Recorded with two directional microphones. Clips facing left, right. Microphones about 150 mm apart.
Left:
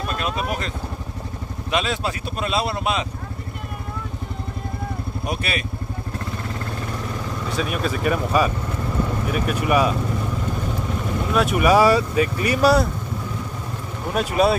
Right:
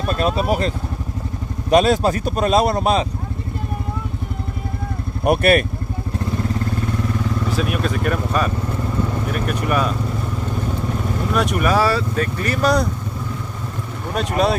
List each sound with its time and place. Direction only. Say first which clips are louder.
0.1 s speech: right 8 dB; 35° right (ahead or behind)
5.2 s speech: right 13 dB; 55° right (ahead or behind)
7.4 s speech: even; centre (ahead or behind)
11.3 s speech: left 2 dB; 5° left (ahead or behind)
14.1 s speech: even; 5° left (ahead or behind)